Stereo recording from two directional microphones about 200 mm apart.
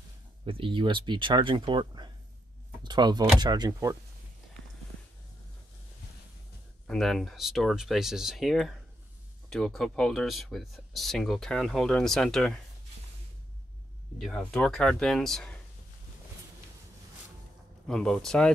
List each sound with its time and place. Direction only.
0.5 s speech: 25° right (ahead or behind)
6.9 s speech: centre (ahead or behind)
14.1 s speech: 5° left (ahead or behind)
17.8 s speech: 5° left (ahead or behind)